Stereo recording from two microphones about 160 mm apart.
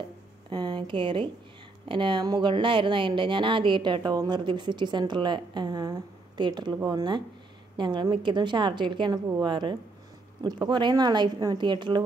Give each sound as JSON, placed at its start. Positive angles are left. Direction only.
{"t": 0.5, "sound": "a woman's voice", "side_deg": -30}